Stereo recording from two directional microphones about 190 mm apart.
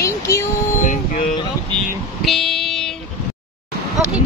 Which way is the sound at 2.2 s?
Centre (ahead or behind).